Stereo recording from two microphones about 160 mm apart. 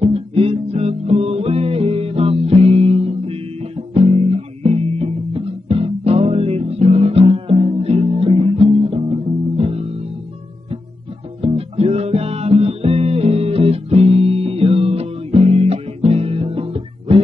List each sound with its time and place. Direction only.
0.0 s music: 35° right (ahead or behind)
11.4 s music: 40° right (ahead or behind)